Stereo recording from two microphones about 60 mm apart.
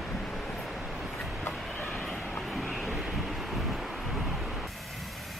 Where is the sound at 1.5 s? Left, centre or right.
Centre.